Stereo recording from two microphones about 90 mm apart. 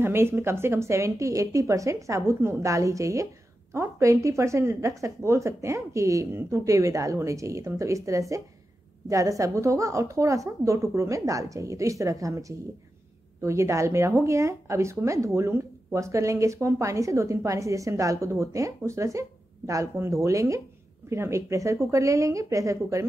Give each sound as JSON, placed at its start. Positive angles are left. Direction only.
{"t": 0.0, "sound": "speech", "side_deg": -25}